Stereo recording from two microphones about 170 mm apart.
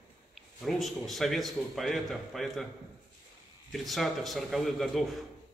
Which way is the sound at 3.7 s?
Centre (ahead or behind).